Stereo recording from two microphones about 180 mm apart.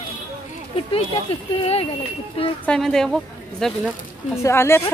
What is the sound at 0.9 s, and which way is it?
Speech, 35° left (ahead or behind).